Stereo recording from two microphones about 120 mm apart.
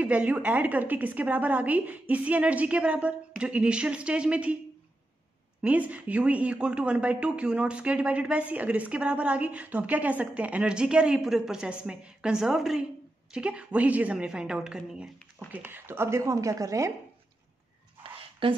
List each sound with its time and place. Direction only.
0.0 s speech: 10° right (ahead or behind)
5.6 s speech: 10° right (ahead or behind); by 16.9 s 25° right (ahead or behind)
18.4 s speech: 45° right (ahead or behind)